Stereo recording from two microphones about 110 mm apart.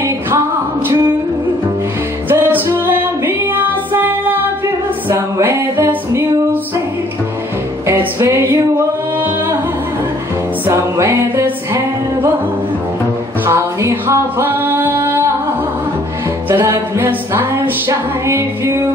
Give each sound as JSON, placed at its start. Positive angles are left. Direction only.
{"t": 2.2, "sound": "music", "side_deg": -20}
{"t": 7.8, "sound": "music", "side_deg": -25}
{"t": 10.7, "sound": "music", "side_deg": -25}
{"t": 13.5, "sound": "music", "side_deg": -25}
{"t": 16.4, "sound": "music", "side_deg": -25}